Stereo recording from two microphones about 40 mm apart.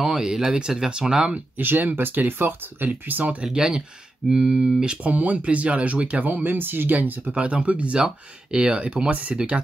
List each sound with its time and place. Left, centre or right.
0.0 s speech: centre
1.6 s speech: right
2.9 s speech: right
3.4 s speech: centre
5.0 s speech: right
7.3 s speech: right